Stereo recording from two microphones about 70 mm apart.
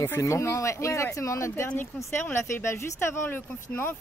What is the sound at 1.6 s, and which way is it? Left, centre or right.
Speech, left.